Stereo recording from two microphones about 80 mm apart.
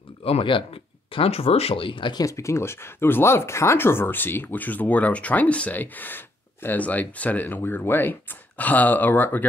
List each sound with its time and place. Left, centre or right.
0.4 s speech: left
2.2 s speech: left